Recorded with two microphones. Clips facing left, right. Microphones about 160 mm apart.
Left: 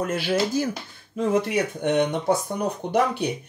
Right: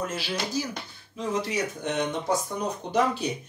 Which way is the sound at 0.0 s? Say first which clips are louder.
Left 7 dB; 55° left (ahead or behind).